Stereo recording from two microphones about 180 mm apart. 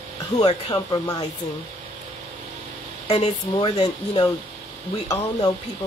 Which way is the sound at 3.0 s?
30° left (ahead or behind).